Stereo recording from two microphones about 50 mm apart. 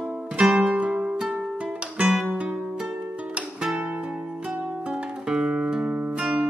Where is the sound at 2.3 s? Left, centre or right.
Centre.